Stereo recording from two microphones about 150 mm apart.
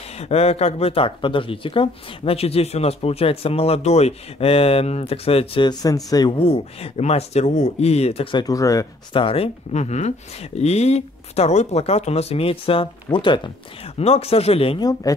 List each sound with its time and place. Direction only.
0.2 s speech: 45° left (ahead or behind); by 6.3 s 25° left (ahead or behind)
6.4 s speech: 40° left (ahead or behind); by 8.8 s 20° left (ahead or behind)
9.1 s speech: 35° left (ahead or behind)
14.8 s speech: 25° left (ahead or behind)